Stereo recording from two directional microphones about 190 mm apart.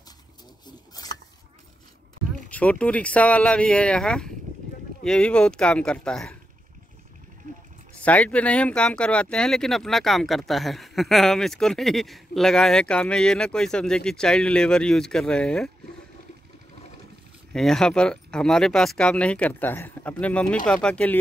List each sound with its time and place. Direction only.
1.0 s a sound: 20° left (ahead or behind)
2.5 s speech: 5° left (ahead or behind)
7.9 s speech: 5° left (ahead or behind)
17.5 s speech: 5° left (ahead or behind)